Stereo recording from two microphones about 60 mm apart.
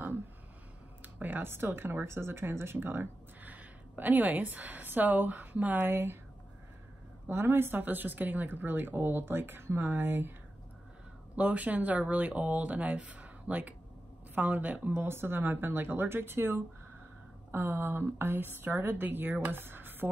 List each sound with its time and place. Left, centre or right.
1.0 s speech: right
7.2 s speech: right
11.3 s speech: right
15.0 s speech: right